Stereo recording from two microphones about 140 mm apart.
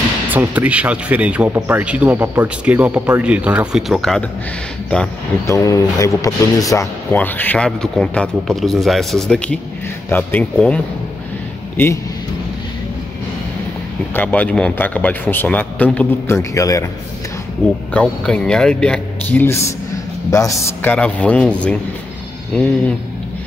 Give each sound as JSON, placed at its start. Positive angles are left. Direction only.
{"t": 0.3, "sound": "speech", "side_deg": -10}
{"t": 5.5, "sound": "speech", "side_deg": 25}
{"t": 7.2, "sound": "speech", "side_deg": 10}
{"t": 14.1, "sound": "speech", "side_deg": 10}
{"t": 16.3, "sound": "speech", "side_deg": 25}
{"t": 17.9, "sound": "speech", "side_deg": 5}
{"t": 20.9, "sound": "speech", "side_deg": 10}